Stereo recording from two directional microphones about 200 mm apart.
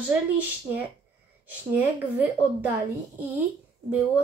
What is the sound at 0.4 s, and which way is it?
Speech, 10° right (ahead or behind).